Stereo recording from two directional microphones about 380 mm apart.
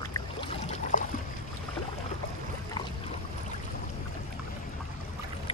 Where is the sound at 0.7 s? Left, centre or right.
Left.